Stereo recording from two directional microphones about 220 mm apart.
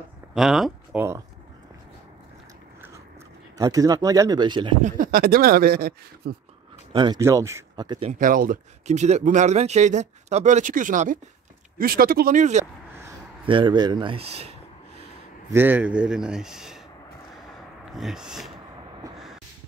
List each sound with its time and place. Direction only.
0.3 s a sound: centre (ahead or behind)
3.5 s speech: 15° right (ahead or behind)
4.8 s a man's voice: 40° right (ahead or behind)
6.9 s speech: 20° right (ahead or behind)
8.1 s speech: 35° right (ahead or behind)
13.5 s speech: 20° right (ahead or behind)
15.5 s a man's voice: 10° right (ahead or behind)
17.9 s a man's voice: centre (ahead or behind)